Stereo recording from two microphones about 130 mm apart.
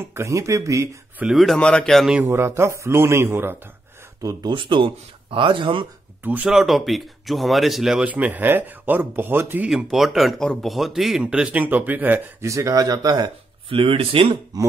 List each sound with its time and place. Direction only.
0.0 s speech: 20° right (ahead or behind)
1.2 s a man's voice: centre (ahead or behind)
2.1 s speech: 20° right (ahead or behind)
4.2 s speech: 30° right (ahead or behind)
6.2 s a man's voice: 15° right (ahead or behind)
6.5 s a man's voice: centre (ahead or behind)
9.7 s a man's voice: 5° right (ahead or behind); by 13.3 s 30° right (ahead or behind)
13.7 s speech: 45° right (ahead or behind)